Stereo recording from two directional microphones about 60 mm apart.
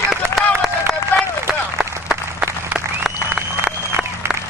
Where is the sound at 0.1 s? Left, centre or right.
Centre.